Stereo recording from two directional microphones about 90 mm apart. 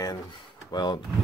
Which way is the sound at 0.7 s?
50° left (ahead or behind).